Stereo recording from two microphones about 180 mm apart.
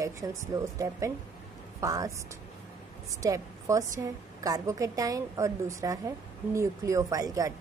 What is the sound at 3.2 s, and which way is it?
A woman's voice, 20° right (ahead or behind).